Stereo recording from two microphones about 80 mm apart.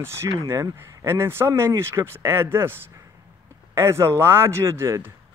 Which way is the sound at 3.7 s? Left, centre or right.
Right.